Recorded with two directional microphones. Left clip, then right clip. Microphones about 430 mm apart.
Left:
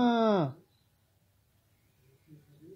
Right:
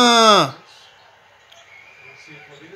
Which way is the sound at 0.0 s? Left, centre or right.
Centre.